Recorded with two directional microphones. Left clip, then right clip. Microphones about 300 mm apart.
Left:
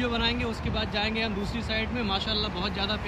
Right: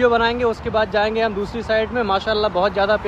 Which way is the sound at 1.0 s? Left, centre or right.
Centre.